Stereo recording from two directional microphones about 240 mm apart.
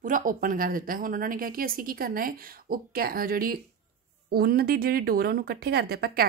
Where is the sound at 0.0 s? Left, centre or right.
Right.